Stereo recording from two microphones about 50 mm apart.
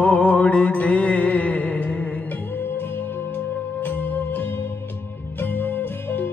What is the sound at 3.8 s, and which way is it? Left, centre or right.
Music, left.